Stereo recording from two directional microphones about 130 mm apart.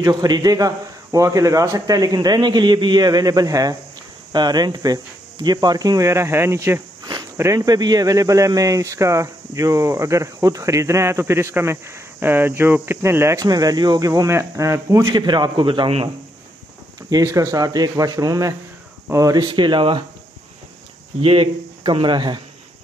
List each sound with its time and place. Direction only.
0.0 s speech: 30° right (ahead or behind)
17.1 s speech: 25° right (ahead or behind)
21.2 s speech: 45° right (ahead or behind)